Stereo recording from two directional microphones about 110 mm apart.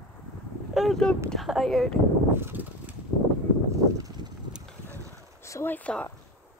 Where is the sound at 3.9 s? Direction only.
35° right (ahead or behind).